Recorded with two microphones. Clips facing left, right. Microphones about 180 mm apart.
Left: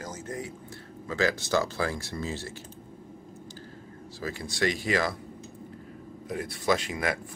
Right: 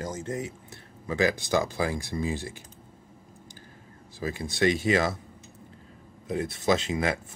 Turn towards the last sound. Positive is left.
turn(degrees=-25)  # may be behind; listen again after turning